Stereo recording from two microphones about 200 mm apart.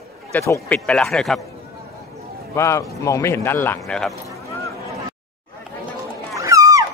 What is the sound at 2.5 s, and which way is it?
A man's voice, 15° left (ahead or behind).